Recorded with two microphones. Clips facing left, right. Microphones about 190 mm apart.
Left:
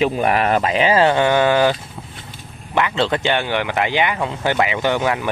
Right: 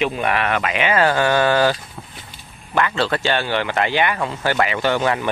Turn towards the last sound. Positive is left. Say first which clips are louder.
# even
turn(degrees=15)  # may be behind; listen again after turning